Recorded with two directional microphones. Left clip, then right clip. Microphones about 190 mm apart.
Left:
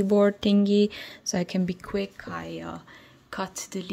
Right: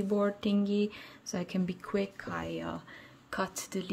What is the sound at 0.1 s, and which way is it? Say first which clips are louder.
Speech: left 9 dB; 25° left (ahead or behind).